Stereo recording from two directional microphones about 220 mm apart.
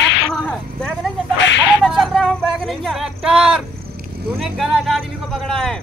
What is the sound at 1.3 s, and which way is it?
Cricket, 55° left (ahead or behind).